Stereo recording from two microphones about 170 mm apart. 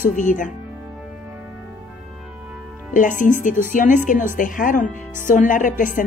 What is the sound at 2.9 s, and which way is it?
A woman's voice, 50° left (ahead or behind).